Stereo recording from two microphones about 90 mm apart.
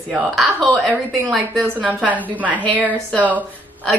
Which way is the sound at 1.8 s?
15° right (ahead or behind).